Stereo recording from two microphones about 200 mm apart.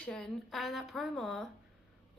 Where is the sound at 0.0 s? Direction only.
5° left (ahead or behind).